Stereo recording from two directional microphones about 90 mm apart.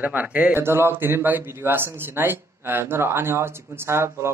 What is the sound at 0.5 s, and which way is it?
Speech, 25° right (ahead or behind).